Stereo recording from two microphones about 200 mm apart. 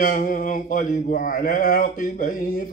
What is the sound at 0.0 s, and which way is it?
Speech, 40° left (ahead or behind).